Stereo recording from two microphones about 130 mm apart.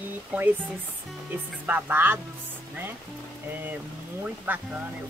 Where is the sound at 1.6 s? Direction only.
15° right (ahead or behind).